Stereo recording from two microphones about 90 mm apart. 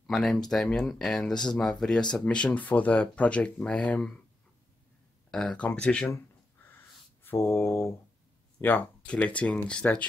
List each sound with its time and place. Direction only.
0.0 s speech: 5° left (ahead or behind)
5.3 s speech: 10° left (ahead or behind)
7.2 s a sound: 30° left (ahead or behind)
8.5 s speech: 20° left (ahead or behind)